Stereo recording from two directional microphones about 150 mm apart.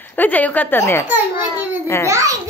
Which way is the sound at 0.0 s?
10° left (ahead or behind).